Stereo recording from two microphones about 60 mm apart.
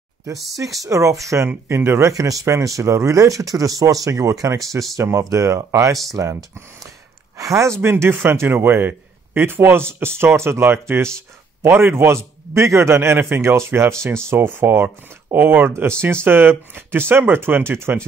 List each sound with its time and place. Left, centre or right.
0.8 s a man's voice: right
6.2 s a man's voice: right
7.3 s a man's voice: right